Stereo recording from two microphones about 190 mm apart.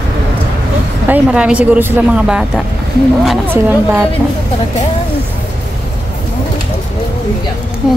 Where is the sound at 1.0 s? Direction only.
10° right (ahead or behind).